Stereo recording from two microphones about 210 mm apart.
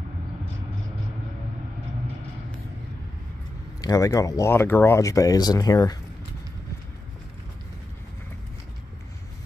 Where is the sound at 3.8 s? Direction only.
15° left (ahead or behind).